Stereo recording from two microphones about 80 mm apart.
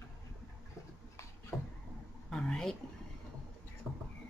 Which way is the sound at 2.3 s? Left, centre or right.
Centre.